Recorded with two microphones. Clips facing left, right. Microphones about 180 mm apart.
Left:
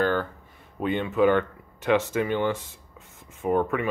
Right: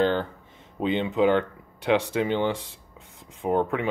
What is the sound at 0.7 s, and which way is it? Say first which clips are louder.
Speech: even; 20° right (ahead or behind).